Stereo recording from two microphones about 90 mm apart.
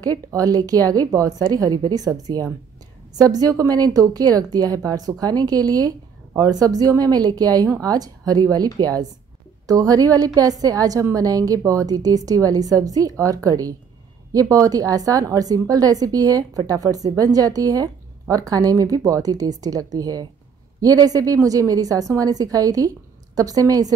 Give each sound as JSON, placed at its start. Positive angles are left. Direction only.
{"t": 0.0, "sound": "a woman's voice", "side_deg": -40}